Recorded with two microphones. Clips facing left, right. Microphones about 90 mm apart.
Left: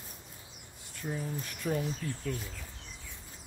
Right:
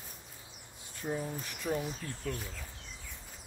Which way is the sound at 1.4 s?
5° right (ahead or behind).